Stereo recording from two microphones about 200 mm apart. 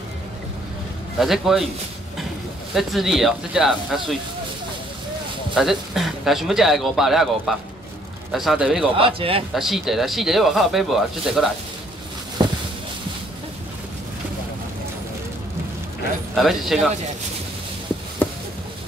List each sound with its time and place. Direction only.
1.2 s a man's voice: centre (ahead or behind)
2.7 s a man's voice: centre (ahead or behind)
5.5 s a man's voice: centre (ahead or behind)
8.9 s speech: 25° right (ahead or behind)
9.5 s a man's voice: centre (ahead or behind)
16.3 s a man's voice: centre (ahead or behind)